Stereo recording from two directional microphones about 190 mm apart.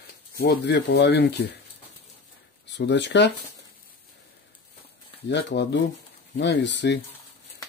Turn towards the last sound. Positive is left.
turn(degrees=70)  # may be behind; listen again after turning